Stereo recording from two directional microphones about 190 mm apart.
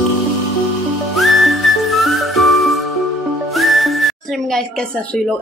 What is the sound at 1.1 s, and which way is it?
Whistling, centre (ahead or behind).